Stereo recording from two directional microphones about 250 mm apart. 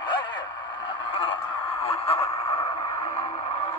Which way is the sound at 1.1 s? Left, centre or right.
Left.